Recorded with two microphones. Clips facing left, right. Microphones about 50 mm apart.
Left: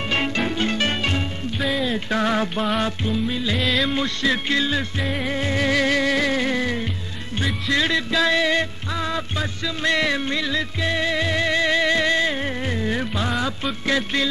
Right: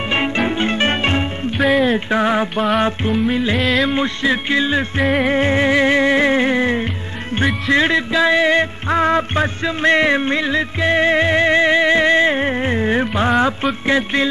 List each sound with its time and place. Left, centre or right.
0.1 s music: right
2.0 s music: right
2.8 s music: right
3.5 s music: centre
3.9 s music: right
5.2 s music: right